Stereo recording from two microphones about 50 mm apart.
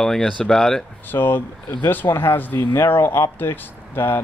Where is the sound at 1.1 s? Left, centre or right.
Left.